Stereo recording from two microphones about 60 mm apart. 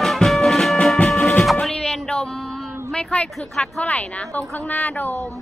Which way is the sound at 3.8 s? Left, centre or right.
Left.